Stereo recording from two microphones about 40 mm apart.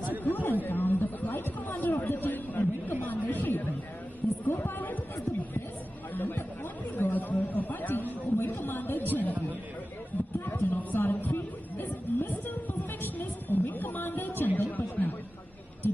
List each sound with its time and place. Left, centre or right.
0.2 s chatter: left
4.5 s a sound: left
6.1 s chatter: left
7.0 s chatter: left
10.4 s music: left
13.0 s a sound: left